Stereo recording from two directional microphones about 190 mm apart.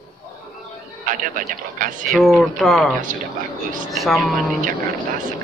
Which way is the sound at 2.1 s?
Centre (ahead or behind).